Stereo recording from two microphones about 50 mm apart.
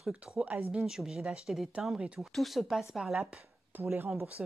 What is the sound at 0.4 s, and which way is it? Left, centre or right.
Speech, right.